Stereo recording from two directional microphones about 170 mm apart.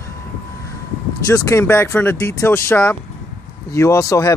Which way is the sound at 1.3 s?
20° left (ahead or behind).